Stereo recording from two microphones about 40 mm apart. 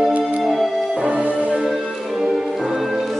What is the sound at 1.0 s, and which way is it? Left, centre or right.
Music, right.